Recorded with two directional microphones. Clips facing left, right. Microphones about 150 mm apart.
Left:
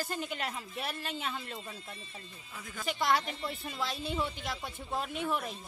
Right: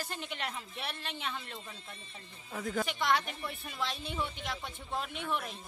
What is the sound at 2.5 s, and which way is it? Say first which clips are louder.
Speech: right 11 dB; 55° right (ahead or behind).